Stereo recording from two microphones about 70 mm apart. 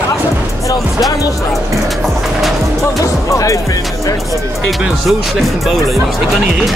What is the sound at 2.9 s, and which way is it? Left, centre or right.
Music, left.